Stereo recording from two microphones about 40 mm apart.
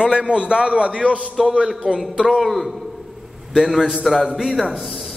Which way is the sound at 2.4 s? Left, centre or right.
Centre.